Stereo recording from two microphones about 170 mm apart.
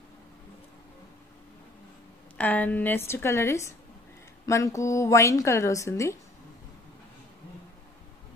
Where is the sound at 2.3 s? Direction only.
10° left (ahead or behind).